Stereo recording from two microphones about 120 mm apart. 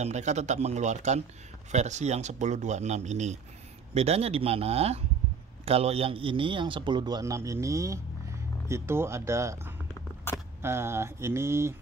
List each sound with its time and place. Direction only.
0.0 s speech: 70° right (ahead or behind)
3.9 s a man's voice: 60° right (ahead or behind); by 11.7 s 20° right (ahead or behind)